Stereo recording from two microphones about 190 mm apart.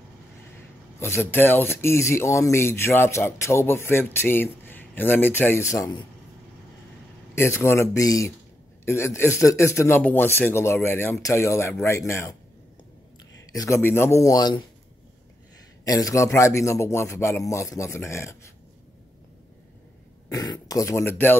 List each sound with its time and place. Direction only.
0.9 s speech: 15° left (ahead or behind)
7.3 s speech: 15° left (ahead or behind)
13.5 s speech: 15° left (ahead or behind)
15.8 s speech: 15° left (ahead or behind)
20.3 s speech: 20° left (ahead or behind)